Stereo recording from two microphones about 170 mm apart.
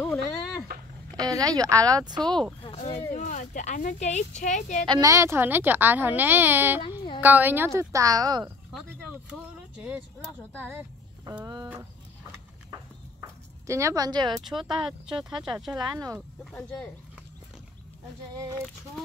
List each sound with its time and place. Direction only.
0.0 s a sound: 15° left (ahead or behind)
1.1 s speech: 20° right (ahead or behind)
2.2 s speech: 5° left (ahead or behind)
3.2 s speech: 45° left (ahead or behind)
4.8 s speech: 25° right (ahead or behind)
9.1 s a sound: 5° right (ahead or behind)
11.4 s speech: 20° right (ahead or behind)
13.2 s speech: 15° right (ahead or behind)
14.5 s speech: 5° right (ahead or behind)
15.7 s speech: 20° right (ahead or behind)
16.5 s speech: 5° left (ahead or behind)